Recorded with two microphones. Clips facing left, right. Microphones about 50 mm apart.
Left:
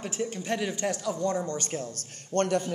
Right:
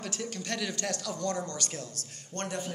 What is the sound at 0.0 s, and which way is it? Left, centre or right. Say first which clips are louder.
A man's voice: left 5 dB; left.